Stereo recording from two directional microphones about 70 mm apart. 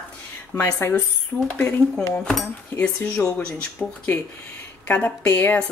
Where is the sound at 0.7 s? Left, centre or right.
Left.